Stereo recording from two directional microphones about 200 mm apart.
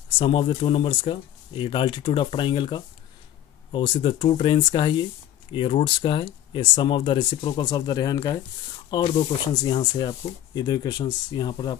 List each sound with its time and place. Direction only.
0.2 s speech: 25° left (ahead or behind)